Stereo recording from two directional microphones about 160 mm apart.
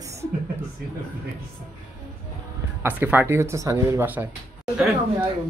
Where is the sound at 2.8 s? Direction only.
10° right (ahead or behind).